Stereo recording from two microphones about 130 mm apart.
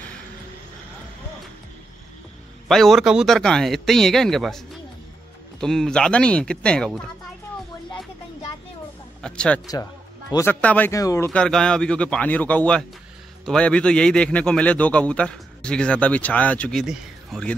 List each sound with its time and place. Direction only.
2.7 s a man's voice: centre (ahead or behind)
9.2 s a man's voice: 5° left (ahead or behind)
10.9 s speech: 25° left (ahead or behind)
11.3 s a man's voice: 5° left (ahead or behind)
16.8 s speech: 5° right (ahead or behind)